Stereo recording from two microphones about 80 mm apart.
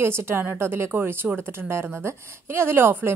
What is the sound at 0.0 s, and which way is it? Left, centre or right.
A woman's voice, right.